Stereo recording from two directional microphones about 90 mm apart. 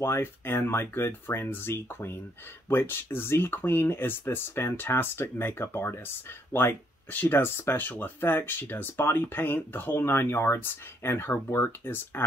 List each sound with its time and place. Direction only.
0.0 s speech: 30° left (ahead or behind)